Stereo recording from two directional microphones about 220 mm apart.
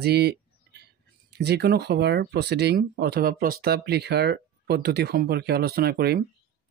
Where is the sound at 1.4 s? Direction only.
50° right (ahead or behind).